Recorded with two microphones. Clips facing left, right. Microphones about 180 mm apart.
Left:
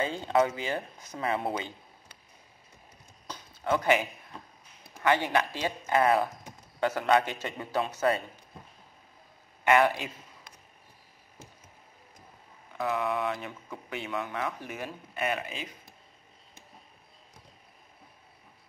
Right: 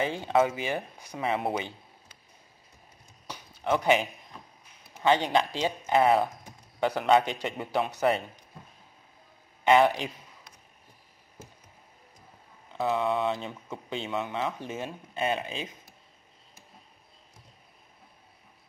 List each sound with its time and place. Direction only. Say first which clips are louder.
0.0 s speech: right 1 dB; 20° right (ahead or behind)
3.6 s speech: right 1 dB; 20° right (ahead or behind)
9.7 s speech: right 2 dB; 20° right (ahead or behind)
12.7 s speech: right 3 dB; 25° right (ahead or behind)